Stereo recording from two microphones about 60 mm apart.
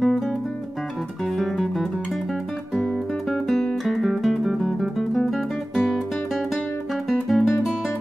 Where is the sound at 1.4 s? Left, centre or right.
Centre.